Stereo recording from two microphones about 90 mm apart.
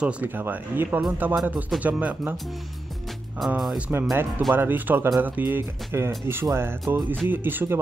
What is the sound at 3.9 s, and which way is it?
Speech, 20° right (ahead or behind).